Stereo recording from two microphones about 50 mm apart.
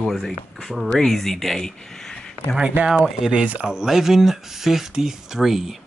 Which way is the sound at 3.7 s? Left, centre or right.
Centre.